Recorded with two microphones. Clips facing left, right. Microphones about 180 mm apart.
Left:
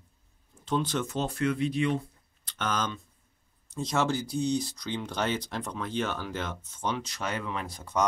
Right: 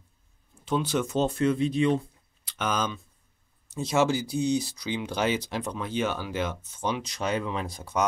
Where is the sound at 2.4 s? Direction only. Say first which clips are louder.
Right 2 dB; 10° right (ahead or behind).